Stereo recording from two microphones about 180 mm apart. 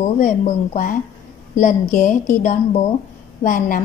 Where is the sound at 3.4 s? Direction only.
50° left (ahead or behind).